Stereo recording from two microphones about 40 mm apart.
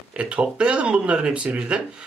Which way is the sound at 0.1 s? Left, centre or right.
Right.